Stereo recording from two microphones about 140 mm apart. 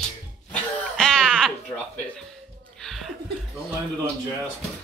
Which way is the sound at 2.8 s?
Centre (ahead or behind).